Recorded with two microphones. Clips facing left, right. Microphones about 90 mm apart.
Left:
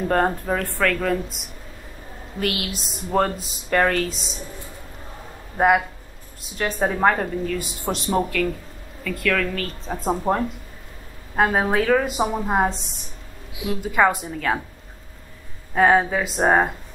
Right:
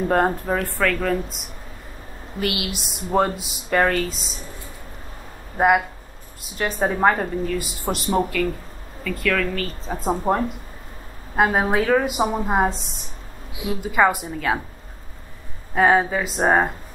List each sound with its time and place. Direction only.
0.1 s speech: 5° right (ahead or behind)
2.4 s speech: 5° right (ahead or behind)
5.6 s a woman's voice: centre (ahead or behind)
15.7 s speech: centre (ahead or behind)